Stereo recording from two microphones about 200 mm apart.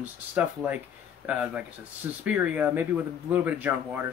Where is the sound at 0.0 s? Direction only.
10° right (ahead or behind).